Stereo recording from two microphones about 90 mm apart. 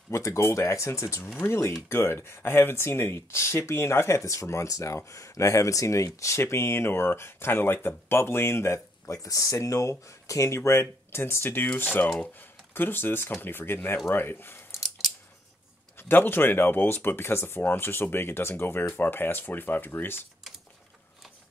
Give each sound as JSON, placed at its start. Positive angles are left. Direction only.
{"t": 0.1, "sound": "speech", "side_deg": 35}
{"t": 16.0, "sound": "speech", "side_deg": 20}